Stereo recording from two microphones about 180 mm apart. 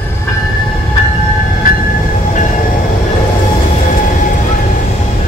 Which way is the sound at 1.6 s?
55° left (ahead or behind).